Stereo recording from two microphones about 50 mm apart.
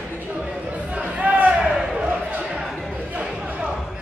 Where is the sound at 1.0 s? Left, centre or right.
Right.